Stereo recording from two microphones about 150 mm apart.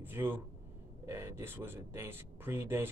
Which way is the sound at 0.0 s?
15° right (ahead or behind).